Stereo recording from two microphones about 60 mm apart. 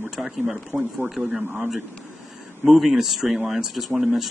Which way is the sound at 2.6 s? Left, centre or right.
Centre.